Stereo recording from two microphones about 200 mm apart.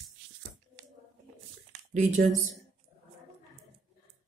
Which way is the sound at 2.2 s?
50° right (ahead or behind).